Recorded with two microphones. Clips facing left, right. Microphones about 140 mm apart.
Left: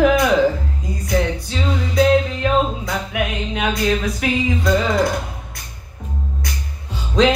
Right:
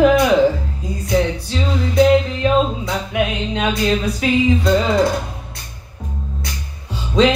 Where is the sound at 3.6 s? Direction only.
25° right (ahead or behind).